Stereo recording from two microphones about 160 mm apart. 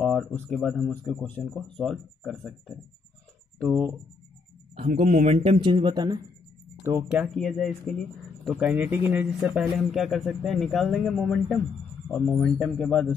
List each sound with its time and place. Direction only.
0.0 s speech: 5° left (ahead or behind)
5.0 s speech: 45° right (ahead or behind)
5.6 s speech: 30° right (ahead or behind)
6.8 s speech: 15° right (ahead or behind); by 7.7 s centre (ahead or behind)
8.6 s speech: 10° right (ahead or behind); by 13.1 s 5° left (ahead or behind)